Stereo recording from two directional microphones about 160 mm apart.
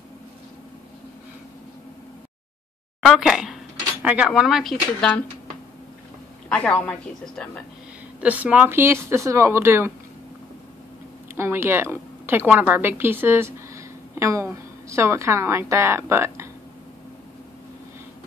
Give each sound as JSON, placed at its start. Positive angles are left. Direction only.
{"t": 3.0, "sound": "speech", "side_deg": 0}
{"t": 6.5, "sound": "a woman's voice", "side_deg": 5}
{"t": 8.2, "sound": "speech", "side_deg": -10}
{"t": 11.3, "sound": "a woman's voice", "side_deg": -15}